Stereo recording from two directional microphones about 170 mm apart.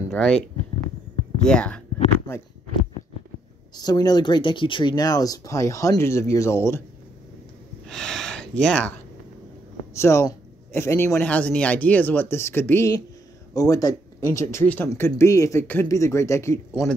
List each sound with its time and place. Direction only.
0.1 s speech: 5° left (ahead or behind)
1.4 s speech: 5° left (ahead or behind)
3.7 s speech: 25° left (ahead or behind)
7.8 s speech: 5° left (ahead or behind)
9.9 s speech: 15° left (ahead or behind)